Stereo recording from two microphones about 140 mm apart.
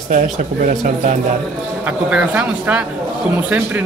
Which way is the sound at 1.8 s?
10° right (ahead or behind).